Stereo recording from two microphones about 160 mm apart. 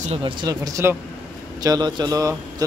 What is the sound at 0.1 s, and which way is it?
A man's voice, 30° right (ahead or behind).